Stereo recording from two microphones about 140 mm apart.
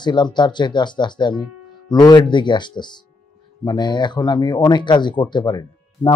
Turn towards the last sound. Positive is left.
turn(degrees=30)  # may be behind; listen again after turning